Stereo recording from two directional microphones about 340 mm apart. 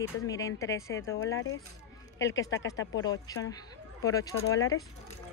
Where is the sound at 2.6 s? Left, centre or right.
Left.